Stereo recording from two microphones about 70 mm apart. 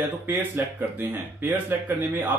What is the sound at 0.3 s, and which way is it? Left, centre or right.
Speech, right.